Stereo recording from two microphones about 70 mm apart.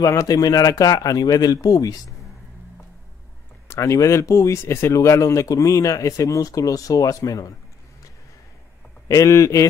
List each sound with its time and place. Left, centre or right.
0.0 s speech: left
3.6 s speech: left
9.0 s speech: left